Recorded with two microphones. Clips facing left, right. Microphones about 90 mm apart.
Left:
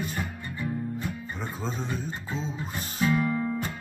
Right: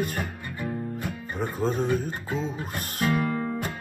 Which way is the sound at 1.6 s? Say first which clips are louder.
Right 9 dB; 55° right (ahead or behind).